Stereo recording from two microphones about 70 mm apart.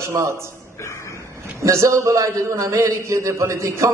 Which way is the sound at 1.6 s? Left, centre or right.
Right.